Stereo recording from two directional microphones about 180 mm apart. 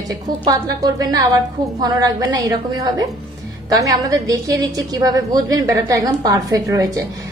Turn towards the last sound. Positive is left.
turn(degrees=-20)  # may be behind; listen again after turning